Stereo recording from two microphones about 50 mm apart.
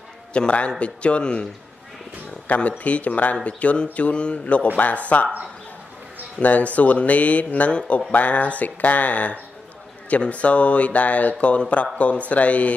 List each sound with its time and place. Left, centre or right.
0.3 s speech: left
6.4 s speech: left